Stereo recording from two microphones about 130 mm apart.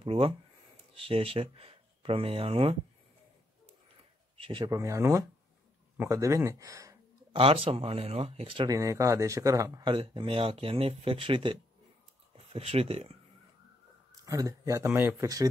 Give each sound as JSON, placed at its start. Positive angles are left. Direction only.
{"t": 0.0, "sound": "speech", "side_deg": -45}
{"t": 4.4, "sound": "speech", "side_deg": -40}
{"t": 4.6, "sound": "speech", "side_deg": -25}
{"t": 7.3, "sound": "speech", "side_deg": -45}
{"t": 8.6, "sound": "speech", "side_deg": -25}
{"t": 12.5, "sound": "speech", "side_deg": -50}
{"t": 14.2, "sound": "speech", "side_deg": -25}